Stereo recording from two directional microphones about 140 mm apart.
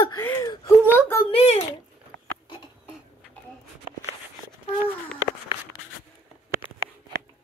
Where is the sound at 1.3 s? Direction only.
45° left (ahead or behind).